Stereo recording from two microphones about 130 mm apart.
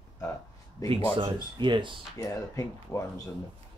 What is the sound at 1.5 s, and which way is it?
Speech, 40° right (ahead or behind).